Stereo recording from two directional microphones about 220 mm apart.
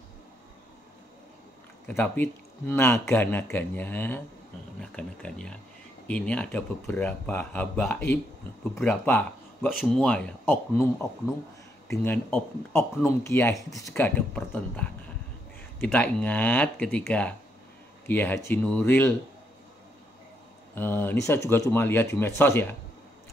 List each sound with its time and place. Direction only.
1.9 s speech: 10° left (ahead or behind)
20.7 s speech: 10° left (ahead or behind)